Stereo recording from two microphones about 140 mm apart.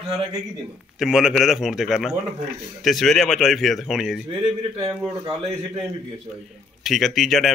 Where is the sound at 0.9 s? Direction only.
5° right (ahead or behind).